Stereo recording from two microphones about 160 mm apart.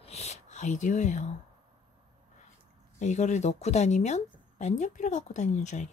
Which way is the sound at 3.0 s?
45° left (ahead or behind).